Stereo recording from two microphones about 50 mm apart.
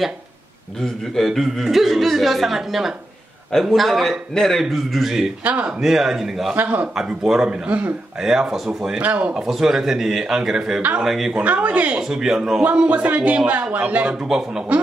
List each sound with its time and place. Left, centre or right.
1.1 s a man's voice: centre
5.4 s speech: right
5.7 s a man's voice: centre
6.5 s a man's voice: right
7.2 s speech: centre
8.2 s a man's voice: centre
9.0 s a man's voice: right
9.3 s a man's voice: centre
11.3 s speech: right
12.0 s a man's voice: centre
12.7 s speech: right